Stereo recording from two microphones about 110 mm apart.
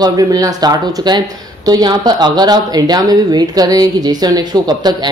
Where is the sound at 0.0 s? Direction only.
35° right (ahead or behind).